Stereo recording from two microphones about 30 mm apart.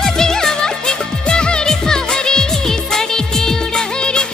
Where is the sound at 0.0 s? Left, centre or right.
Centre.